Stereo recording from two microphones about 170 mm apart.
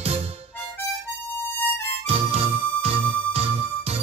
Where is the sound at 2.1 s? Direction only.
35° right (ahead or behind).